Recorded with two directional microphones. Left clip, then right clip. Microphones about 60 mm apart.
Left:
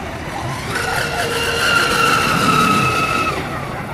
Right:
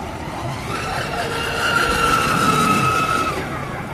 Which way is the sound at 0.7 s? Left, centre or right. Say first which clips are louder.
Left 5 dB; left.